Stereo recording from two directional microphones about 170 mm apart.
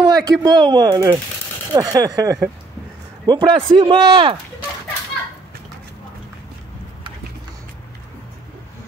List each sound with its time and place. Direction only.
0.0 s speech: 25° right (ahead or behind)